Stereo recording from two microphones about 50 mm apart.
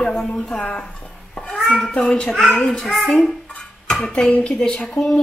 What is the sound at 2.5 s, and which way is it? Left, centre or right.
Sizzle, centre.